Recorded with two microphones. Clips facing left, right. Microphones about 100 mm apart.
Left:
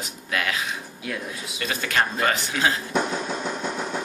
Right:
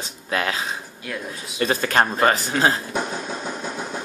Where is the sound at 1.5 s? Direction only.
40° right (ahead or behind).